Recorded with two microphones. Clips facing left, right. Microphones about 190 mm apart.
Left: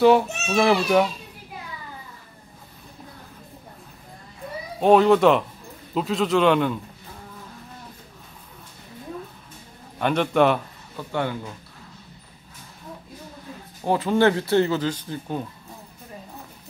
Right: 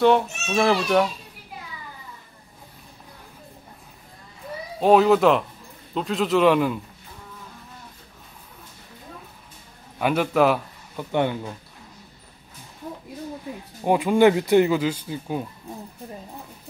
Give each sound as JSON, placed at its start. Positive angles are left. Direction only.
{"t": 0.0, "sound": "speech", "side_deg": 5}
{"t": 4.7, "sound": "speech", "side_deg": 0}
{"t": 9.9, "sound": "speech", "side_deg": -5}
{"t": 11.0, "sound": "speech", "side_deg": -20}
{"t": 13.8, "sound": "speech", "side_deg": -15}